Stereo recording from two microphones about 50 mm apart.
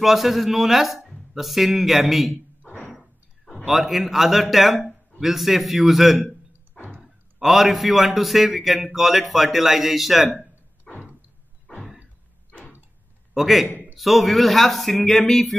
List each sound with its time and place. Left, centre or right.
0.0 s a man's voice: centre
2.6 s door: left
2.9 s a sound: centre
5.2 s a man's voice: centre
10.9 s a sound: centre
13.3 s a man's voice: centre